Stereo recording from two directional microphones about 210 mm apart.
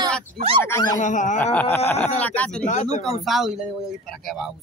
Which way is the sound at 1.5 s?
10° left (ahead or behind).